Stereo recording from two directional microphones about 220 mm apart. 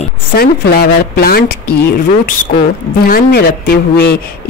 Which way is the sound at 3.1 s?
45° left (ahead or behind).